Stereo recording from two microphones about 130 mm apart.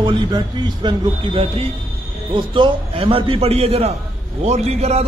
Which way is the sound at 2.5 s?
45° right (ahead or behind).